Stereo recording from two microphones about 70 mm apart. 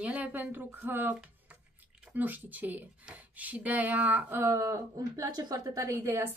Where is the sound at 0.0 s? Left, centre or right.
Right.